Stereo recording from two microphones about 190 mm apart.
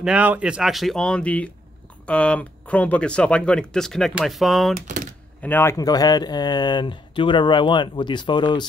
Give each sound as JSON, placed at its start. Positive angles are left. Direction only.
{"t": 0.0, "sound": "speech", "side_deg": -5}
{"t": 4.7, "sound": "typewriter", "side_deg": -40}
{"t": 5.4, "sound": "speech", "side_deg": 10}